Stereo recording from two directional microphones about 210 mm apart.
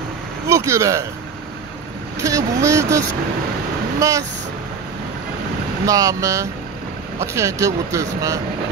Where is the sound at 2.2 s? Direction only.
15° right (ahead or behind).